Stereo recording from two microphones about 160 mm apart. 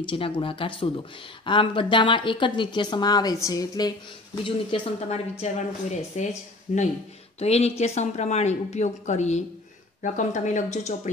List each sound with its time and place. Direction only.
0.0 s speech: 35° left (ahead or behind)
4.4 s speech: 35° left (ahead or behind)
5.4 s a woman's voice: 45° left (ahead or behind)